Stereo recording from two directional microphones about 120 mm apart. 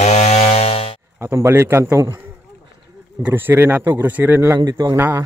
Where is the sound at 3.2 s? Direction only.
15° right (ahead or behind).